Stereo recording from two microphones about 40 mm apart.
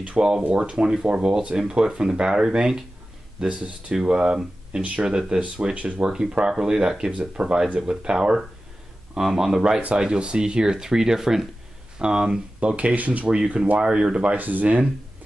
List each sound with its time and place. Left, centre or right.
0.2 s speech: right
0.5 s speech: right
3.4 s speech: right
3.9 s speech: centre
4.7 s speech: right
5.0 s speech: centre
6.0 s speech: centre
9.9 s speech: right
12.0 s speech: right
13.7 s speech: right
14.3 s speech: right